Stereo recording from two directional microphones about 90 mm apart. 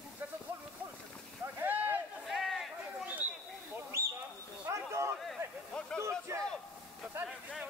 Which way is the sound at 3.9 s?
30° right (ahead or behind).